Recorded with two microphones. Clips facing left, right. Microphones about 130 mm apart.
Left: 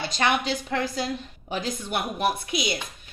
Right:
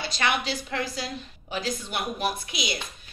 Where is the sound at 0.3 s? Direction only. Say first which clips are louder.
Left 3 dB; 50° left (ahead or behind).